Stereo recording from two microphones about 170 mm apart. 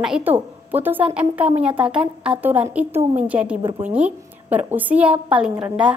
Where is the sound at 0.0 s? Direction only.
5° right (ahead or behind).